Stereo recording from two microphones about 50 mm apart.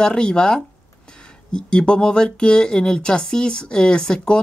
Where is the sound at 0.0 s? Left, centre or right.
Centre.